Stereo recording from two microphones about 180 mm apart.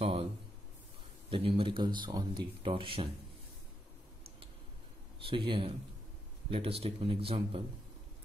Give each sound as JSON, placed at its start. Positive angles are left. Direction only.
{"t": 0.0, "sound": "a sound", "side_deg": -35}
{"t": 1.3, "sound": "speech", "side_deg": -30}
{"t": 5.2, "sound": "speech", "side_deg": -30}